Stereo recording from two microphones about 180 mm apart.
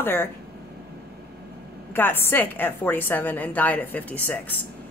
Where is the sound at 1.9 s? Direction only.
10° left (ahead or behind).